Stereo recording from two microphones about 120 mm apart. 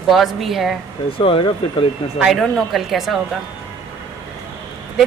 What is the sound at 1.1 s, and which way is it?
Speech, 50° left (ahead or behind).